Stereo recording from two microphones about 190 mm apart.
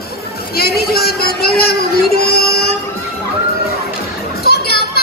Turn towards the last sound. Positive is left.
turn(degrees=55)  # may be behind; listen again after turning